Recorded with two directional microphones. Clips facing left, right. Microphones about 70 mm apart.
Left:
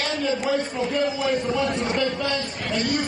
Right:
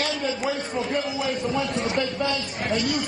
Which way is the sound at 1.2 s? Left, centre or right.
Left.